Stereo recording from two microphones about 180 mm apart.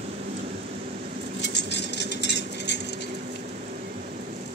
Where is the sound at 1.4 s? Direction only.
70° left (ahead or behind).